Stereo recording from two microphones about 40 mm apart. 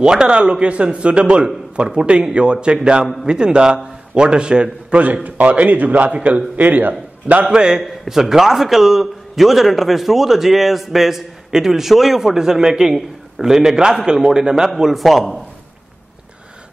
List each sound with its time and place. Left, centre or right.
0.0 s a man's voice: right
4.9 s a man's voice: right
6.0 s a man's voice: right
6.5 s a man's voice: right
7.4 s a man's voice: centre
7.8 s a man's voice: centre
14.8 s a man's voice: centre